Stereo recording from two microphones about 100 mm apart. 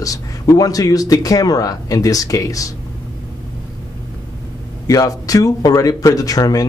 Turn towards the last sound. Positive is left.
turn(degrees=40)  # may be behind; listen again after turning